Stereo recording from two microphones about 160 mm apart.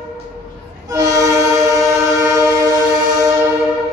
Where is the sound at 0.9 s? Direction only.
20° right (ahead or behind).